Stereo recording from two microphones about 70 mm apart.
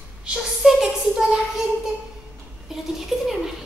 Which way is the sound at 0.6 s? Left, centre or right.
Centre.